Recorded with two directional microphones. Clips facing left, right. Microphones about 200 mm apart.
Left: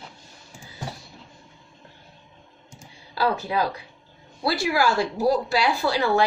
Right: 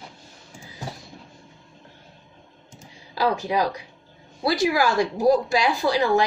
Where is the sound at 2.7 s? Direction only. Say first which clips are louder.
Right 1 dB; 20° right (ahead or behind).